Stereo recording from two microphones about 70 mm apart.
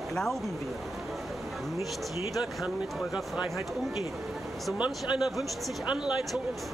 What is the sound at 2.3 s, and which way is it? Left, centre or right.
Speech, centre.